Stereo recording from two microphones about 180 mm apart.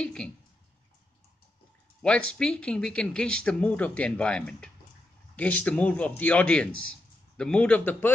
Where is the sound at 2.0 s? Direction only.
5° left (ahead or behind).